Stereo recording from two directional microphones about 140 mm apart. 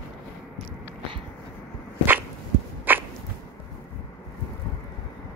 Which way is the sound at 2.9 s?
15° right (ahead or behind).